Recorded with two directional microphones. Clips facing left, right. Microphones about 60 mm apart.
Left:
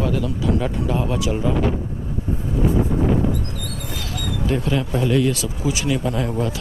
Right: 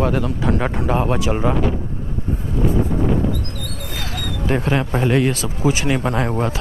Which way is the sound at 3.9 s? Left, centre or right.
Right.